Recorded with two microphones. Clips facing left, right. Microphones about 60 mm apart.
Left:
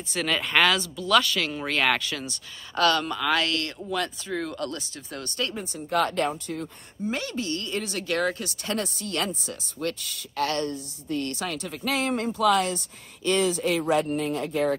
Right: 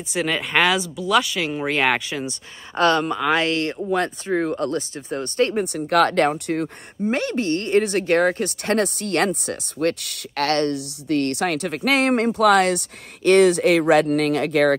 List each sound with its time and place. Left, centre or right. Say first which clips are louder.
0.1 s speech: right 3 dB; centre; by 5.6 s right
5.6 s speech: right 5 dB; right